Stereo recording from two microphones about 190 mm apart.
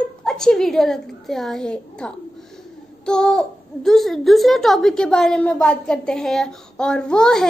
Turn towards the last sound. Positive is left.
turn(degrees=5)  # may be behind; listen again after turning